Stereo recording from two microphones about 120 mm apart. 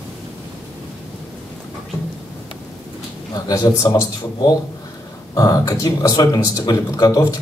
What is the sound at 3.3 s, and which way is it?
Speech, 30° left (ahead or behind).